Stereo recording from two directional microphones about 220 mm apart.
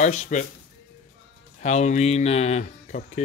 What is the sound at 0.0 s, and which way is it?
Speech, 35° left (ahead or behind).